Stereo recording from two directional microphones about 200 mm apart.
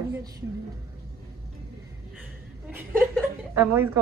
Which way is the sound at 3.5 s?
10° right (ahead or behind).